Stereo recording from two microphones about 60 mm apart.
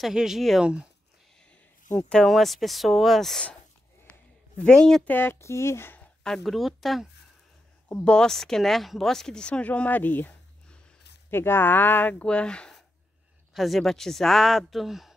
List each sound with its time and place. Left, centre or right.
0.0 s speech: centre
2.0 s speech: centre
2.2 s a woman's voice: centre
4.6 s speech: centre
5.0 s speech: left
5.4 s speech: left
6.2 s a woman's voice: centre
8.0 s speech: centre
13.5 s a woman's voice: centre